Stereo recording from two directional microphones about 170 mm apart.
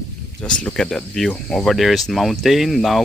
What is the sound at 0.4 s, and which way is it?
Speech, 5° left (ahead or behind).